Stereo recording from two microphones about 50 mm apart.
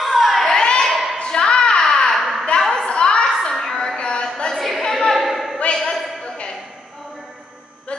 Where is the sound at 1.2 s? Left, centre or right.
Centre.